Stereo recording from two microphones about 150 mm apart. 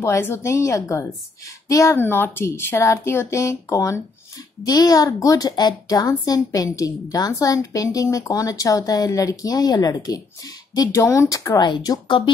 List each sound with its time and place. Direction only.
0.0 s a woman's voice: 20° left (ahead or behind)